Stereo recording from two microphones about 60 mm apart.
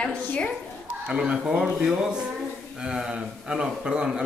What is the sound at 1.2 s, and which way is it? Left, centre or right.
A man's voice, centre.